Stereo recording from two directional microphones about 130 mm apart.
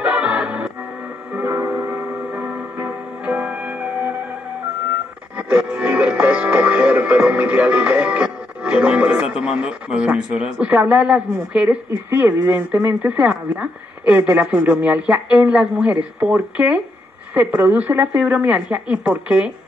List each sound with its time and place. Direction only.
0.0 s music: 10° right (ahead or behind)
5.5 s music: 10° right (ahead or behind)
11.9 s speech: 15° right (ahead or behind)